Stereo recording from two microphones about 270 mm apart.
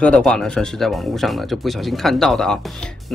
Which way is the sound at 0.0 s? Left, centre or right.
Centre.